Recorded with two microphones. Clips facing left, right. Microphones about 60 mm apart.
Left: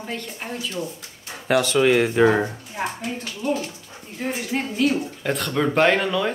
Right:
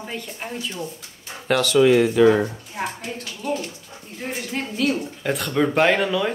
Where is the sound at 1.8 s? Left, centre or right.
Left.